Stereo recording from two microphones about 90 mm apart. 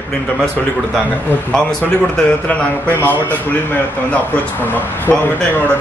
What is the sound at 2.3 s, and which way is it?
Speech, 15° left (ahead or behind).